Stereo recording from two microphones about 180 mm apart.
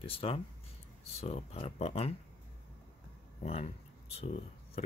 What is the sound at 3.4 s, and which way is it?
Speech, 35° left (ahead or behind).